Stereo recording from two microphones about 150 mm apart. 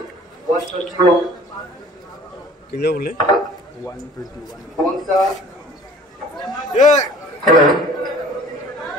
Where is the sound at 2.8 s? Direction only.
85° left.